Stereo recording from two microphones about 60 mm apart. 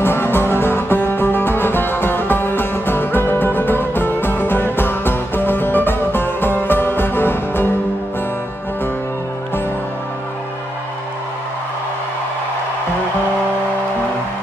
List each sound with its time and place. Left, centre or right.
0.0 s music: left